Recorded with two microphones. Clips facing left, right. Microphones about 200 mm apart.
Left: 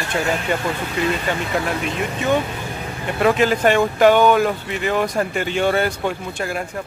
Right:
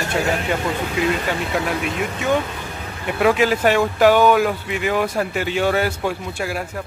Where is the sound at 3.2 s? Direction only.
5° right (ahead or behind).